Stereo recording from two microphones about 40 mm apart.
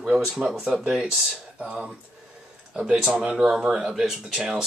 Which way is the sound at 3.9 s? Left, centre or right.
Centre.